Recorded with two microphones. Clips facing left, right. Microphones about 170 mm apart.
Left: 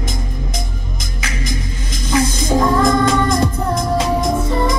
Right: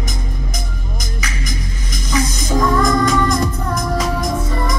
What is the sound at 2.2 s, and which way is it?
Music, 30° left (ahead or behind).